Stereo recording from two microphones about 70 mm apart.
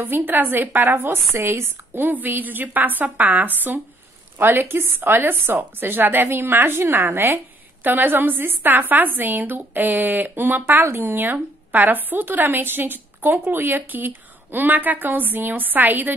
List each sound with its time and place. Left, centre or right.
0.0 s a woman's voice: right